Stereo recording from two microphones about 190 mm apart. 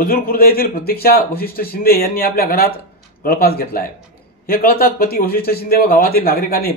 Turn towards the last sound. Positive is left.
turn(degrees=50)  # may be behind; listen again after turning